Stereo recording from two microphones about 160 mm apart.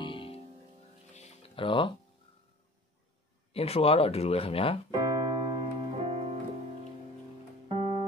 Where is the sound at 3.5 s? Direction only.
40° left (ahead or behind).